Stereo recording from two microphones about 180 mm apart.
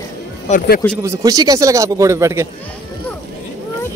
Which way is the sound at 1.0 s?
15° right (ahead or behind).